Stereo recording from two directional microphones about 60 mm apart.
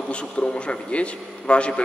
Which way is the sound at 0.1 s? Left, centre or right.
Centre.